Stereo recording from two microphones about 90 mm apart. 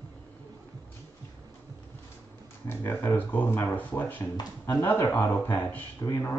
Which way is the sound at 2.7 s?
25° left (ahead or behind).